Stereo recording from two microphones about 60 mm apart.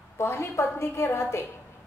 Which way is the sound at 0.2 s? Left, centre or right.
Left.